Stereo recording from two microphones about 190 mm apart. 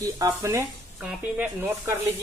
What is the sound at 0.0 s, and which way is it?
Speech, 15° right (ahead or behind).